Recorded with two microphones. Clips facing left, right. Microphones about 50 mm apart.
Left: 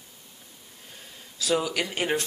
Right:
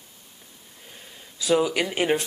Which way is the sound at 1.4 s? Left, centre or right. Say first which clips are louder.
Right 4 dB; centre.